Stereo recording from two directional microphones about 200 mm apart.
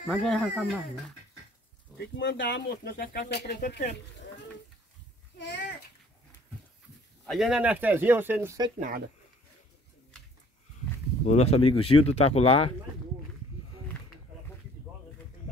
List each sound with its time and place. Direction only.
0.0 s speech: centre (ahead or behind)
2.0 s speech: 60° left (ahead or behind)
7.2 s speech: centre (ahead or behind); by 8.7 s 15° right (ahead or behind)
8.7 s speech: 40° right (ahead or behind)
11.2 s speech: 30° left (ahead or behind)